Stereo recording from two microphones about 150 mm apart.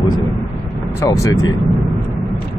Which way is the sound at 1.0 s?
25° left (ahead or behind).